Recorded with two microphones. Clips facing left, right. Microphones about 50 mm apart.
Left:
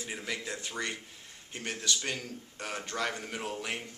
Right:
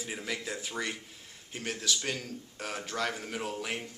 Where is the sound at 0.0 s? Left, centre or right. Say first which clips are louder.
Right 1 dB; centre.